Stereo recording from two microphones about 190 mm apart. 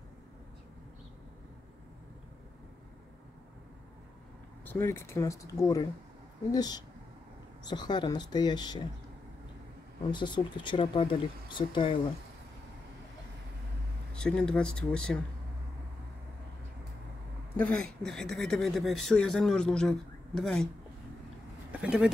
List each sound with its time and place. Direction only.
4.6 s speech: 10° left (ahead or behind)
10.1 s speech: 25° left (ahead or behind)
14.1 s speech: 5° left (ahead or behind)
17.6 s speech: 5° left (ahead or behind)
21.8 s speech: 5° right (ahead or behind)